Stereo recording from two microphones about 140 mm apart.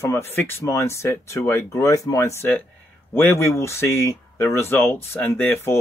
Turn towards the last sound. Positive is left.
turn(degrees=15)  # may be behind; listen again after turning